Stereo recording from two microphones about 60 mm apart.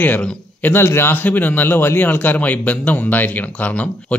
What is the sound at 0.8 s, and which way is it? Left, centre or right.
A man's voice, left.